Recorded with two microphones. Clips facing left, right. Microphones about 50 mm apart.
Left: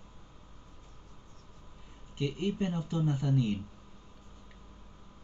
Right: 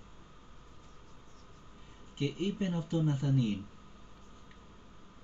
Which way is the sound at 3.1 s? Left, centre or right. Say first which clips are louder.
Left 1 dB; left.